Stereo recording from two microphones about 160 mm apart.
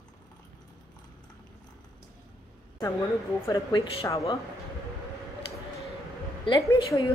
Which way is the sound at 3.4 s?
25° left (ahead or behind).